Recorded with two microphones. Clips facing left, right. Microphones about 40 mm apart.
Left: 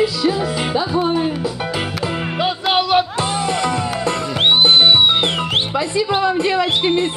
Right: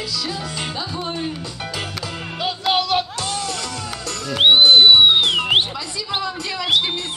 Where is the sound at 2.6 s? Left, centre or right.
Centre.